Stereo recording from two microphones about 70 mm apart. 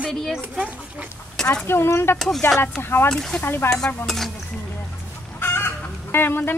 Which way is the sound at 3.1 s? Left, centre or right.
Centre.